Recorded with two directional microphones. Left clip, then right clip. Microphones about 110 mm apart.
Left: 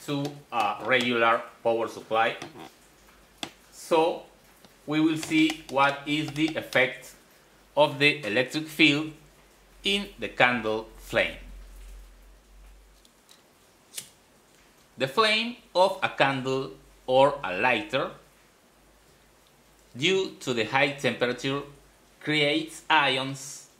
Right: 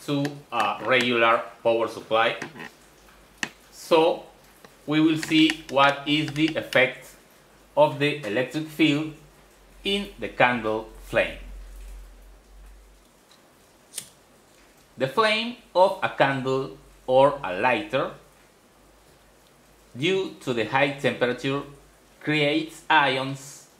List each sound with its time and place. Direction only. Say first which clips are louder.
0.0 s speech: right 4 dB; 5° left (ahead or behind)
3.9 s speech: right 4 dB; centre (ahead or behind)
6.5 s speech: right 3 dB; 10° left (ahead or behind)
7.7 s speech: right 1 dB; 45° left (ahead or behind)
9.8 s speech: even; 25° left (ahead or behind)
14.0 s scissors: right 1 dB; centre (ahead or behind)
15.0 s speech: right 1 dB; 15° left (ahead or behind)
17.0 s speech: right 2 dB; 30° left (ahead or behind)
20.0 s speech: even; 30° left (ahead or behind); by 23.4 s 15° left (ahead or behind)